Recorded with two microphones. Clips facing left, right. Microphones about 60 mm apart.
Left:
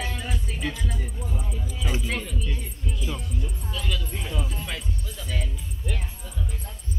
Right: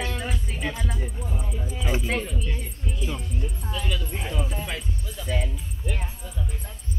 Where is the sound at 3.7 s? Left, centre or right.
Centre.